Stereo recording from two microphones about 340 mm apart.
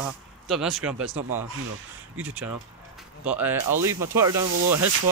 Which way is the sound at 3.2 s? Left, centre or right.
Centre.